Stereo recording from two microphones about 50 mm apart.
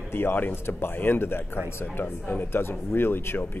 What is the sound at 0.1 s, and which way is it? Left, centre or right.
Speech, left.